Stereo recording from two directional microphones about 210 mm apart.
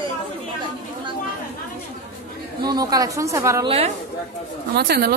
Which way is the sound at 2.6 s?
15° right (ahead or behind).